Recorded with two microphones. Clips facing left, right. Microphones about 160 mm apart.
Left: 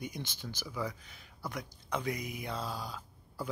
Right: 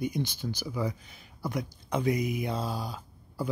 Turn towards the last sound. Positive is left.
turn(degrees=-10)  # may be behind; listen again after turning